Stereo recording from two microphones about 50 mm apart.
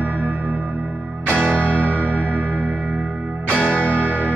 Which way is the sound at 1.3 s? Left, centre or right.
Right.